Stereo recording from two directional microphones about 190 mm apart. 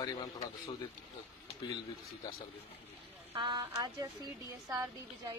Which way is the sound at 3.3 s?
25° right (ahead or behind).